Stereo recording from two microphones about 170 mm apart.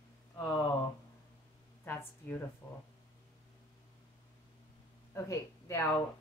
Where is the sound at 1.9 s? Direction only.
15° left (ahead or behind).